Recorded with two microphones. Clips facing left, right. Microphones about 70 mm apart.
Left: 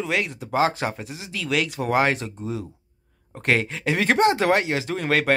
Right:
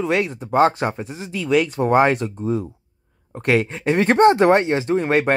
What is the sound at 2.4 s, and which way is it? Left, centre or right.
Speech, right.